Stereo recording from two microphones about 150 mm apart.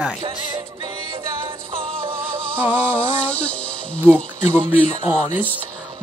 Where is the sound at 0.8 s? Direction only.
35° right (ahead or behind).